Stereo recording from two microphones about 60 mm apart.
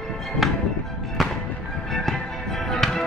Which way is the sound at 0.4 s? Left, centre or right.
Centre.